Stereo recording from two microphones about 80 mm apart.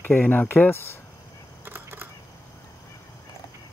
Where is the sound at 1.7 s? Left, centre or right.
Right.